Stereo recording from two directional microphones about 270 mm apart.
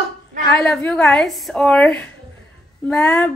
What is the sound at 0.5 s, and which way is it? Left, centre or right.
A woman's voice, centre.